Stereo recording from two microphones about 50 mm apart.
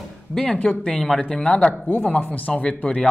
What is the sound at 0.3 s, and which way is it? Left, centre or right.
Speech, centre.